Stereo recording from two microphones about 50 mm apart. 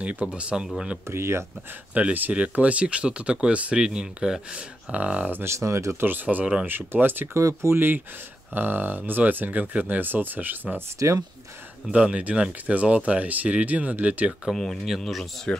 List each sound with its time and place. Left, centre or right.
0.0 s speech: right
1.0 s speech: right
2.0 s speech: right
5.4 s speech: right
5.9 s speech: right
7.3 s speech: right
7.7 s speech: right
11.0 s speech: right
11.9 s speech: right
14.5 s speech: centre
15.5 s speech: centre